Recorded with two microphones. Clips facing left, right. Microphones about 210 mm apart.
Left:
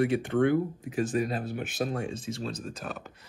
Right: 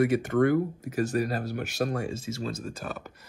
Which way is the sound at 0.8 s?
65° right (ahead or behind).